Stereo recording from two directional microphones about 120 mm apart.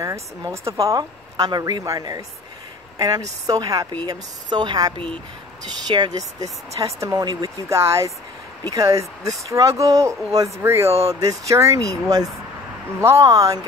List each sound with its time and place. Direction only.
0.0 s speech: 25° right (ahead or behind)
13.0 s speech: 25° right (ahead or behind)